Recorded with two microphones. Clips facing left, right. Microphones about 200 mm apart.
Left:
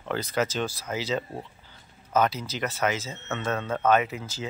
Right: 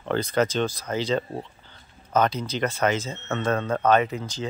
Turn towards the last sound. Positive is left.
turn(degrees=5)  # may be behind; listen again after turning